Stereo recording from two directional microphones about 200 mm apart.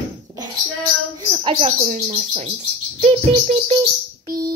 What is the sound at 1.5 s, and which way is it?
A woman's voice, 35° right (ahead or behind).